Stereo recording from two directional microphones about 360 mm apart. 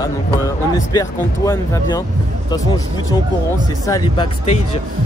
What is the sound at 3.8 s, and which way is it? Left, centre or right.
Speech, centre.